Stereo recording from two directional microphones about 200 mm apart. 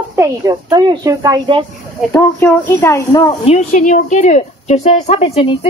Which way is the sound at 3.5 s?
35° left (ahead or behind).